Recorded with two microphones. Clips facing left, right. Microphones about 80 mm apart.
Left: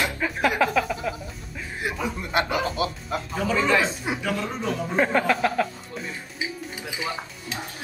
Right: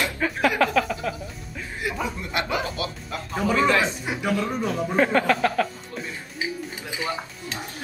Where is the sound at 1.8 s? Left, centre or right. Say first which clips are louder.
Even; left.